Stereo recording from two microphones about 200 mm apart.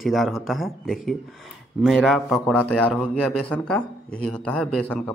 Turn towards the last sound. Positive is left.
turn(degrees=5)  # may be behind; listen again after turning